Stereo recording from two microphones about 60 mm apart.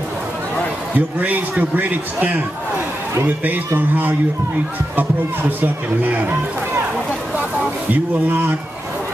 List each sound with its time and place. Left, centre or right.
0.9 s speech: right
7.9 s speech: right